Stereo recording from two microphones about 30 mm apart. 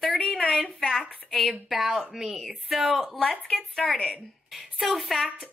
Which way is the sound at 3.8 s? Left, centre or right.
Centre.